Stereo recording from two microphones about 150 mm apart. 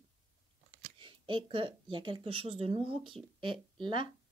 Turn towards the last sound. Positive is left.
turn(degrees=-35)  # may be behind; listen again after turning